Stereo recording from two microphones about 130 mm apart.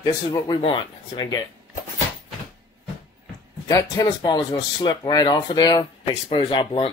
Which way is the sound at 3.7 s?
20° left (ahead or behind).